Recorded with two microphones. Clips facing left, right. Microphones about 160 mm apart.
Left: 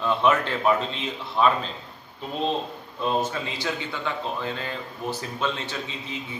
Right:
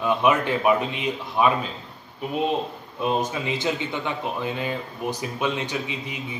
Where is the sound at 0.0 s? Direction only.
15° right (ahead or behind).